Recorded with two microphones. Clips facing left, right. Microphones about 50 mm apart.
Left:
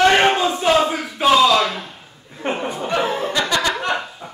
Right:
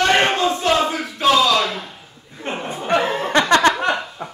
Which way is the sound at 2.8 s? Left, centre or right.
Right.